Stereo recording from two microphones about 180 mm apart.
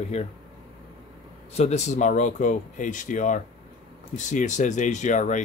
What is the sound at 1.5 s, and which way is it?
Speech, 35° left (ahead or behind).